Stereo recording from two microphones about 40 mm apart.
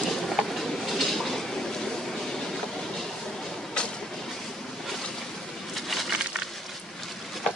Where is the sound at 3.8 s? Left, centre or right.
Left.